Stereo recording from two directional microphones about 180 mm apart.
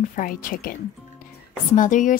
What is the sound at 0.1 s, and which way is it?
Speech, 50° left (ahead or behind).